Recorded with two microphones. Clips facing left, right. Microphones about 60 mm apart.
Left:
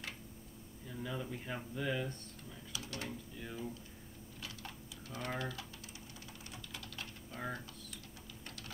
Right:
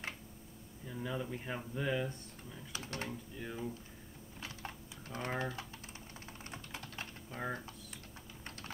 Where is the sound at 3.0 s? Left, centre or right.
Centre.